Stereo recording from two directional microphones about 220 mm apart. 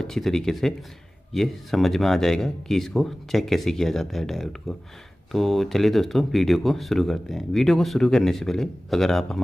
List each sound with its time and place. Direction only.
0.0 s speech: centre (ahead or behind)